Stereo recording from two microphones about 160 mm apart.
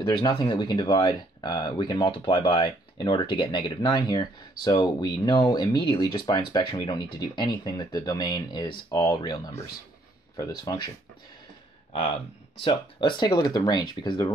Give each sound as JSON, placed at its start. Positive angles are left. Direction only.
{"t": 0.1, "sound": "speech", "side_deg": 30}
{"t": 12.6, "sound": "speech", "side_deg": 30}